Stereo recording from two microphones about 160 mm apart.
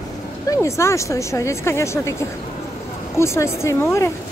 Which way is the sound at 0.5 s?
20° left (ahead or behind).